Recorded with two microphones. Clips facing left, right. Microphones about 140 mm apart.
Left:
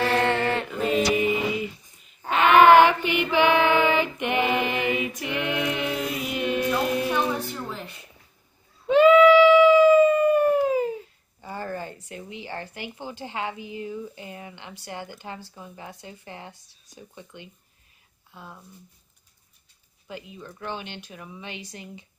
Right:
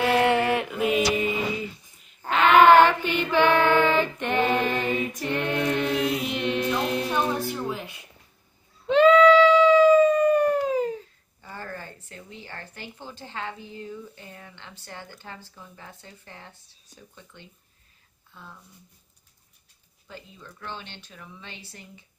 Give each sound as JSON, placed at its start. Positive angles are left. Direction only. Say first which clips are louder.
{"t": 0.0, "sound": "mantra", "louder": "right 2 dB", "side_deg": -10}
{"t": 2.0, "sound": "female singing", "louder": "even", "side_deg": 5}
{"t": 5.2, "sound": "chant", "louder": "right 1 dB", "side_deg": 15}
{"t": 8.8, "sound": "howl", "louder": "left 1 dB", "side_deg": 10}
{"t": 11.4, "sound": "a sound", "louder": "left 6 dB", "side_deg": 15}
{"t": 13.0, "sound": "a woman's voice", "louder": "left 4 dB", "side_deg": 15}
{"t": 20.1, "sound": "a woman's voice", "louder": "left 5 dB", "side_deg": 15}